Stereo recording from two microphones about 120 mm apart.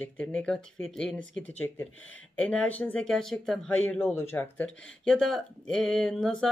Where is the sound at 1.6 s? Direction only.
20° left (ahead or behind).